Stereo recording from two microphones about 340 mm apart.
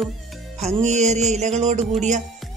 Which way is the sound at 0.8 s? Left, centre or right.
Centre.